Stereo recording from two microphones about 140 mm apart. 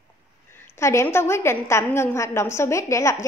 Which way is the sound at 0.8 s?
20° left (ahead or behind).